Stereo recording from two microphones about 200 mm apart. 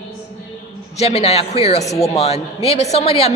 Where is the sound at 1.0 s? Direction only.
30° left (ahead or behind).